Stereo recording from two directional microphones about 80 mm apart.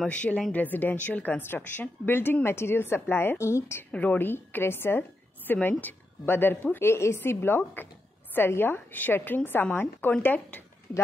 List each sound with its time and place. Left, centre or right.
0.0 s a woman's voice: centre; by 3.8 s left
3.9 s a woman's voice: centre